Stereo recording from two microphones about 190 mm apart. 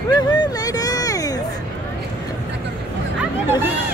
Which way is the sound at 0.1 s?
20° left (ahead or behind).